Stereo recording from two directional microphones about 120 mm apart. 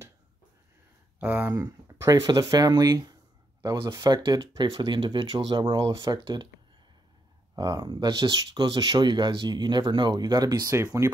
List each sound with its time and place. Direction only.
1.2 s speech: 15° right (ahead or behind); by 6.5 s 40° right (ahead or behind)
7.5 s speech: 35° right (ahead or behind)
10.8 s speech: 20° right (ahead or behind)